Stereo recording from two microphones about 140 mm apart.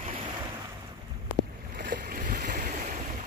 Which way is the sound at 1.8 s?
85° right.